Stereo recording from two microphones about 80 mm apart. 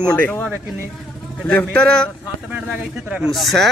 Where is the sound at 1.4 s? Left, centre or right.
Centre.